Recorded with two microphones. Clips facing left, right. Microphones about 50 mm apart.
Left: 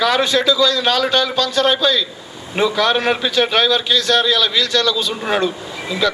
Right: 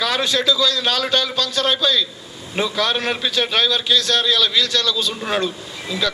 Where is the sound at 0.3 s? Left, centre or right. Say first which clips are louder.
Left 3 dB; left.